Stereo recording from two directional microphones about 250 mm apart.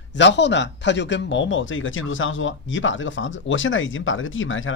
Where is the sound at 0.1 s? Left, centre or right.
Left.